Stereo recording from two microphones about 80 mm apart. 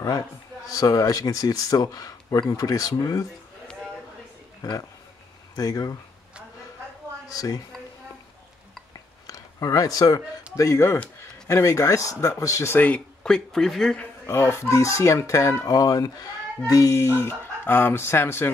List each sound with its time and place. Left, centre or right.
0.7 s speech: left
4.6 s speech: left
7.2 s speech: left
9.3 s speech: left
12.6 s speech: left
14.2 s speech: left